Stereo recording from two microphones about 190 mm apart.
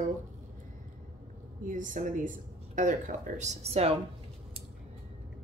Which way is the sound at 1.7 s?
45° right (ahead or behind).